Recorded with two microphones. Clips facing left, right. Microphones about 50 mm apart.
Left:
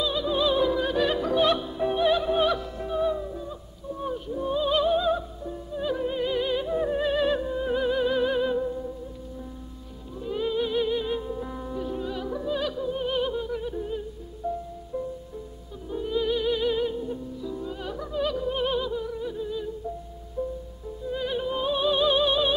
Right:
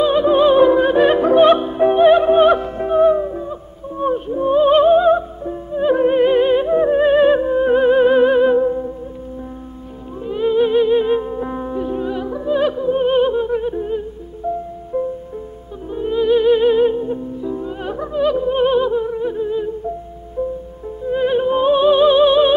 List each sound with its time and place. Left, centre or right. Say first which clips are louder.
0.0 s music: right 12 dB; right
10.2 s music: right 11 dB; right
21.0 s music: right 12 dB; right